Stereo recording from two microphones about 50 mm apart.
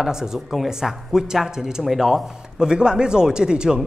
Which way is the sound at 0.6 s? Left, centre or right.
Centre.